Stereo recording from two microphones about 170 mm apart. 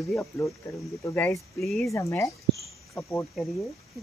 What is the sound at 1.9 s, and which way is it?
Speech, 20° left (ahead or behind).